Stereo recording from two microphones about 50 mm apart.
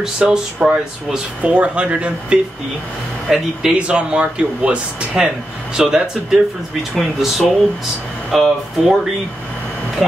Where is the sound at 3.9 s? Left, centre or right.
Right.